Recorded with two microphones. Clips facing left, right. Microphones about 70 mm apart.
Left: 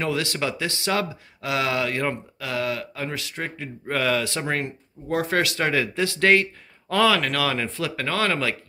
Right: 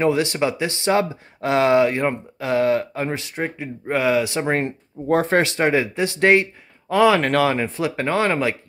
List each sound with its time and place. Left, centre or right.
0.0 s speech: right
4.6 s speech: right; by 7.2 s centre
7.2 s speech: right